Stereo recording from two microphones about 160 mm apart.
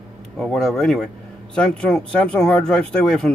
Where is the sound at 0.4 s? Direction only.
Centre (ahead or behind).